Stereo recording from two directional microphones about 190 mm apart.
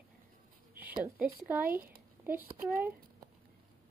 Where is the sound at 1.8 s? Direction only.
10° right (ahead or behind).